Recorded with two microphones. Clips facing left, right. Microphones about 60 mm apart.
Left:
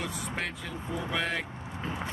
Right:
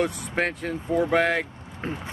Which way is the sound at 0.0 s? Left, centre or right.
Right.